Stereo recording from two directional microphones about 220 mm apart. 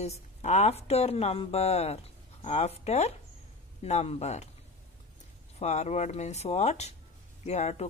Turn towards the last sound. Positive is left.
turn(degrees=30)  # may be behind; listen again after turning